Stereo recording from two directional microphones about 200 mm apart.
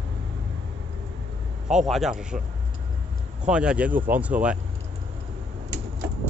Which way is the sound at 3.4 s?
5° right (ahead or behind).